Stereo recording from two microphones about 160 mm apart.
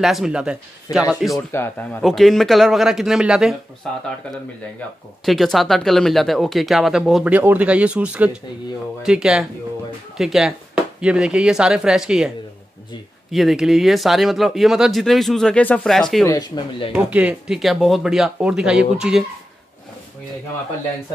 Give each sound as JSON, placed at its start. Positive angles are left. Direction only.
{"t": 0.0, "sound": "speech", "side_deg": 0}
{"t": 1.5, "sound": "speech", "side_deg": 15}
{"t": 5.2, "sound": "speech", "side_deg": 0}
{"t": 13.3, "sound": "speech", "side_deg": 0}
{"t": 16.3, "sound": "speech", "side_deg": 30}
{"t": 16.9, "sound": "speech", "side_deg": -10}